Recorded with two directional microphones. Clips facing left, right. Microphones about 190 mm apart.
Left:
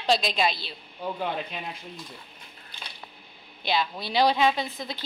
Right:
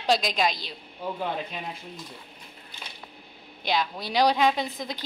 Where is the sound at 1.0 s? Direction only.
Centre (ahead or behind).